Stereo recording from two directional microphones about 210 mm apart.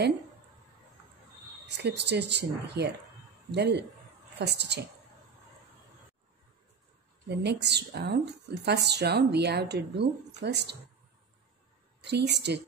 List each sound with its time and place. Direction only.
1.8 s a woman's voice: 55° right (ahead or behind)
7.2 s a woman's voice: 55° right (ahead or behind)
12.0 s a woman's voice: 55° right (ahead or behind)